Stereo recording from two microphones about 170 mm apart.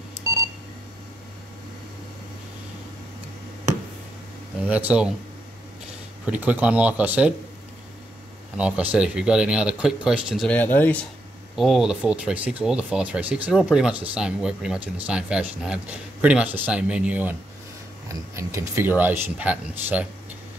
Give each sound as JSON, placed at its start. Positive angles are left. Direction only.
{"t": 0.2, "sound": "beep", "side_deg": -20}
{"t": 4.6, "sound": "speech", "side_deg": -10}
{"t": 6.2, "sound": "speech", "side_deg": -10}
{"t": 8.5, "sound": "speech", "side_deg": -5}
{"t": 10.5, "sound": "speech", "side_deg": 10}
{"t": 11.5, "sound": "speech", "side_deg": 0}